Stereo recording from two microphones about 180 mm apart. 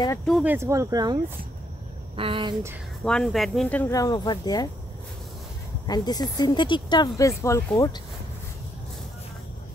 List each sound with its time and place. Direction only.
0.4 s speech: 10° right (ahead or behind); by 2.5 s 30° right (ahead or behind)
3.0 s speech: 5° left (ahead or behind)
3.9 s speech: 20° left (ahead or behind)
5.9 s speech: 20° left (ahead or behind)